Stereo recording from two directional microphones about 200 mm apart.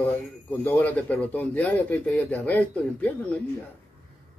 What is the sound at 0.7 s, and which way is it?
Speech, 10° left (ahead or behind).